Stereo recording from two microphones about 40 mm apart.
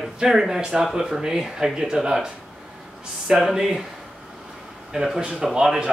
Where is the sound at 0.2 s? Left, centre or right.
Centre.